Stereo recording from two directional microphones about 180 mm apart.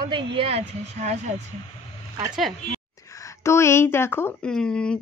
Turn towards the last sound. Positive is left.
turn(degrees=5)  # may be behind; listen again after turning